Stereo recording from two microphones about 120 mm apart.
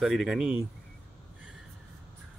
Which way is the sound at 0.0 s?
5° right (ahead or behind).